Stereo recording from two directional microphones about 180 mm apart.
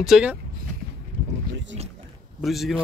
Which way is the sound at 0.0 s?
5° right (ahead or behind).